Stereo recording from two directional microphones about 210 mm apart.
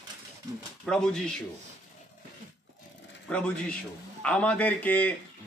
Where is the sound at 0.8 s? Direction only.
5° left (ahead or behind).